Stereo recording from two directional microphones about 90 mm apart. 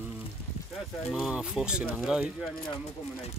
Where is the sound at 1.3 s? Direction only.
10° right (ahead or behind).